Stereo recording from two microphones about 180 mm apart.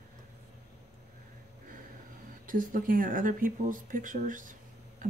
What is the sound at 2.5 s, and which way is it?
Speech, 50° right (ahead or behind).